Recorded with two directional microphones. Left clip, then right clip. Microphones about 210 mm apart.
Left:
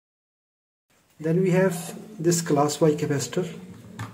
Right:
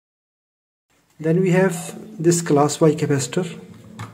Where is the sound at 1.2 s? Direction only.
25° right (ahead or behind).